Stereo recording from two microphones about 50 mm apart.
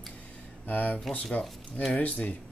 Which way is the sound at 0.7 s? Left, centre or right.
Left.